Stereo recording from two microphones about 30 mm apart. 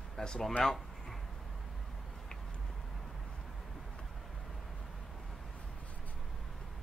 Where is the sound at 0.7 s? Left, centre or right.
Centre.